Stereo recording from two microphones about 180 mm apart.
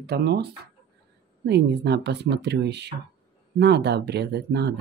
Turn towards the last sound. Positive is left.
turn(degrees=-70)  # may be behind; listen again after turning